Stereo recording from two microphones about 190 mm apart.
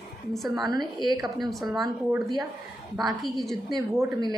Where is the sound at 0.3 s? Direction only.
Centre (ahead or behind).